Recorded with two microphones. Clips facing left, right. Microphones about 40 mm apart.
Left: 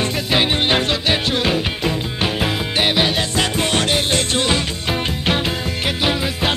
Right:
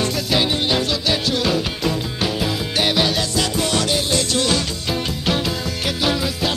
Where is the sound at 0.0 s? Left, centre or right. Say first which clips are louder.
Left 1 dB; left.